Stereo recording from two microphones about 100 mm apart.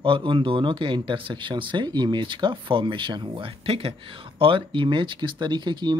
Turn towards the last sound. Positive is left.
turn(degrees=-50)  # may be behind; listen again after turning